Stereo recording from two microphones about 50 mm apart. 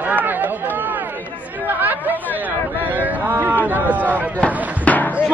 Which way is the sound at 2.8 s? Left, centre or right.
Right.